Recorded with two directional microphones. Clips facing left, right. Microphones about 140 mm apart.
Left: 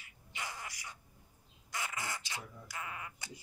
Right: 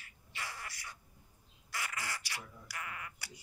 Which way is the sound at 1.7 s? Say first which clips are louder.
Left 1 dB; 20° left (ahead or behind).